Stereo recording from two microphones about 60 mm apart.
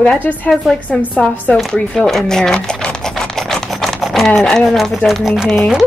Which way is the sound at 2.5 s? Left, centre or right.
Centre.